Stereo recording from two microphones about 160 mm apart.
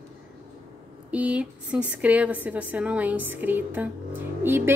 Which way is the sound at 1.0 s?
10° right (ahead or behind).